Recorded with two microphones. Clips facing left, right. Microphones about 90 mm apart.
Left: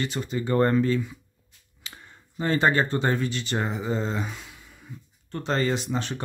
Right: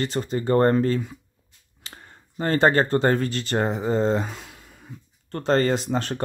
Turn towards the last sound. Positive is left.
turn(degrees=-45)  # may be behind; listen again after turning